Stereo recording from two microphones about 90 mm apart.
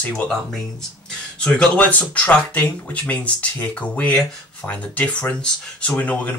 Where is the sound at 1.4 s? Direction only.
10° left (ahead or behind).